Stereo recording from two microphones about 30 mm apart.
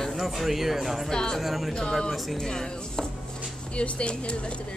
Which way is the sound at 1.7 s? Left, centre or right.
Left.